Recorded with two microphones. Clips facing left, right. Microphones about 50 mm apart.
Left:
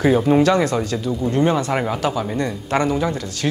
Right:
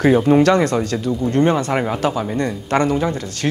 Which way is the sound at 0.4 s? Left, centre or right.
Right.